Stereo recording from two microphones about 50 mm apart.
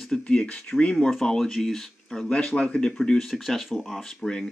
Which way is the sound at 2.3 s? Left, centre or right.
Left.